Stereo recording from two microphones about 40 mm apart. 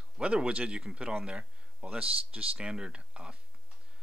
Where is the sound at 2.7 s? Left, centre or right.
Centre.